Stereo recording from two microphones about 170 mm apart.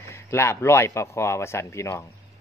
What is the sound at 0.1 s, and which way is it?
Speech, 15° left (ahead or behind).